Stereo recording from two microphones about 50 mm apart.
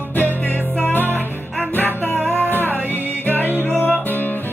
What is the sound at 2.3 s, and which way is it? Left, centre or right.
Music, right.